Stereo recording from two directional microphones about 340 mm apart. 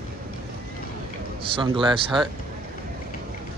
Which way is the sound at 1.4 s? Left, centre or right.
Centre.